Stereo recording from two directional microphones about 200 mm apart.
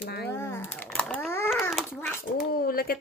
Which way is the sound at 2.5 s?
45° left (ahead or behind).